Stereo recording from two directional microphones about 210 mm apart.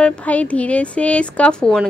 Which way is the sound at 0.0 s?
5° left (ahead or behind).